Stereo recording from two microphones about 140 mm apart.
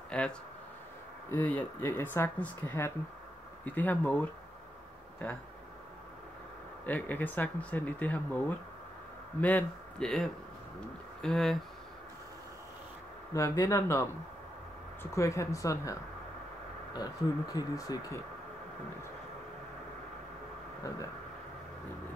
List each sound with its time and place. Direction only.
0.1 s a sound: 5° left (ahead or behind)
1.3 s speech: 10° left (ahead or behind)
6.9 s speech: 10° left (ahead or behind)
13.3 s speech: 20° left (ahead or behind)
15.1 s speech: 20° left (ahead or behind)